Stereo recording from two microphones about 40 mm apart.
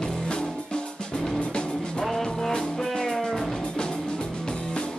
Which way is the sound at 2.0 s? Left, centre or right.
Centre.